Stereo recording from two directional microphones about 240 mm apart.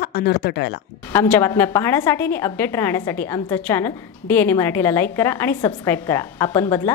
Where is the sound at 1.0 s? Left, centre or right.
Centre.